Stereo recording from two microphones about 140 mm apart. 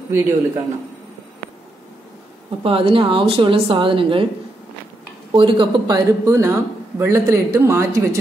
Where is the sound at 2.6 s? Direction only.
40° right (ahead or behind).